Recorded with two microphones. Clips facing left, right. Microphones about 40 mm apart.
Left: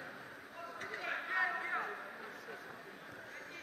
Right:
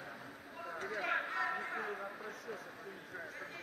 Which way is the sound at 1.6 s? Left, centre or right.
Centre.